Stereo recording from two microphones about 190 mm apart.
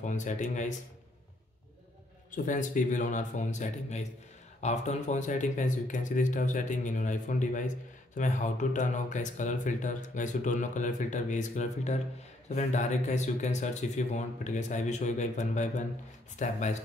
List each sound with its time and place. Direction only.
0.0 s speech: 40° left (ahead or behind)
2.3 s speech: 45° left (ahead or behind)